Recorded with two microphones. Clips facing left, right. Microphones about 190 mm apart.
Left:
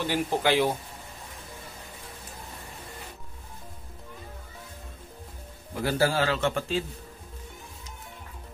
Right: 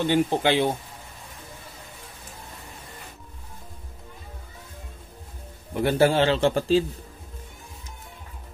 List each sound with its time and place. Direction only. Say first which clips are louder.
0.0 s a man's voice: right 4 dB; 25° right (ahead or behind)
5.8 s a man's voice: right 5 dB; 25° right (ahead or behind)